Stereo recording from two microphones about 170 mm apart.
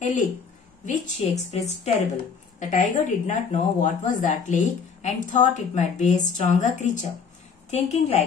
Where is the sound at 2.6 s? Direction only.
50° left (ahead or behind).